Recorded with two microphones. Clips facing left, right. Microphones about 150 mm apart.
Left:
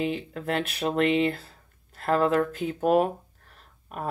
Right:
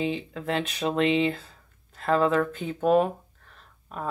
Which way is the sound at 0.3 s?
45° left (ahead or behind).